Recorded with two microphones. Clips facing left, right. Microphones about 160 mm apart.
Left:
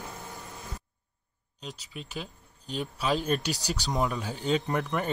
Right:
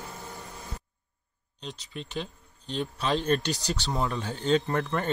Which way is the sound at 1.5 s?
5° left (ahead or behind).